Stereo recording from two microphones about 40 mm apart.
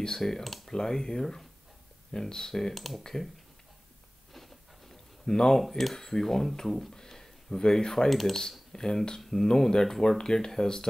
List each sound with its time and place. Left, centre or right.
0.2 s speech: centre
0.7 s speech: centre
2.7 s speech: centre
3.0 s speech: centre
5.2 s speech: centre
7.0 s a sound: centre
8.1 s speech: centre
8.4 s speech: centre